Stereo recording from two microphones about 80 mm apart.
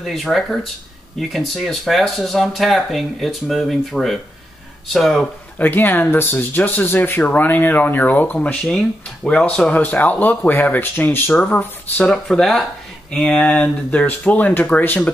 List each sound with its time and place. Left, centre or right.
0.0 s speech: centre
5.6 s speech: left
8.6 s speech: centre
9.8 s speech: left
12.1 s speech: centre; by 15.0 s left